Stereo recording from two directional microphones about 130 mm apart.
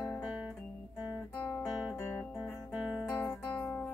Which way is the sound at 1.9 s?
20° left (ahead or behind).